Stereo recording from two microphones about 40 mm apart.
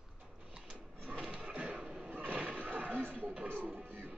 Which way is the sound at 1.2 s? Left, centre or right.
Right.